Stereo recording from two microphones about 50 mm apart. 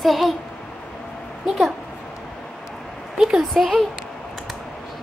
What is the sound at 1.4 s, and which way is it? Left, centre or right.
Speech, centre.